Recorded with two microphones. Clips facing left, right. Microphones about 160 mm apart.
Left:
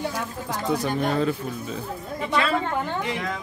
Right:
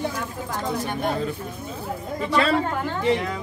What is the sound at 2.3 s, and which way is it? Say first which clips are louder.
Speech: right 2 dB; 35° right (ahead or behind).